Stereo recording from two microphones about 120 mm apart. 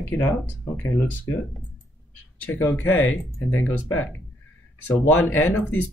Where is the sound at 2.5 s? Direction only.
15° left (ahead or behind).